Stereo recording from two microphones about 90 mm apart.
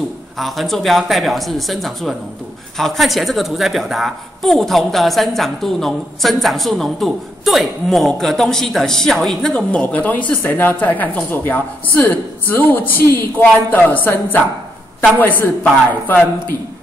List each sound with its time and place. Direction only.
0.4 s a woman's voice: centre (ahead or behind); by 16.5 s 20° left (ahead or behind)